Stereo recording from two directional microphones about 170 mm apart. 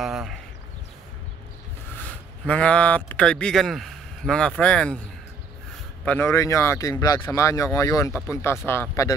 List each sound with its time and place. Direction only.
0.0 s a sound: centre (ahead or behind)
2.0 s speech: 10° left (ahead or behind)
6.0 s speech: 15° left (ahead or behind)